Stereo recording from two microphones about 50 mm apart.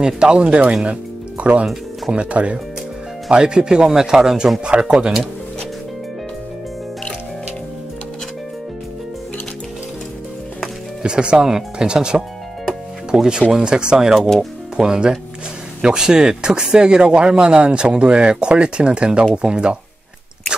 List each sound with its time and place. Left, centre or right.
0.0 s speech: centre
11.0 s speech: centre
14.1 s speech: centre
14.8 s speech: centre